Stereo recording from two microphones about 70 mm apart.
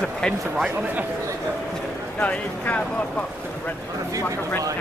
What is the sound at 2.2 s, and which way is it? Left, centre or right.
Speech, centre.